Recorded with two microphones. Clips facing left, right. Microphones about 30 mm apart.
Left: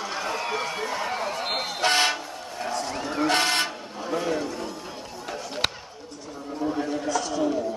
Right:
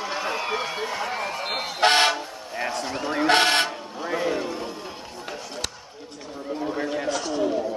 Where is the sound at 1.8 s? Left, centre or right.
Right.